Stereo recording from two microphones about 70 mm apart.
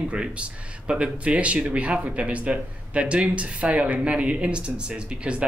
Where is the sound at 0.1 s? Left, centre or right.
Centre.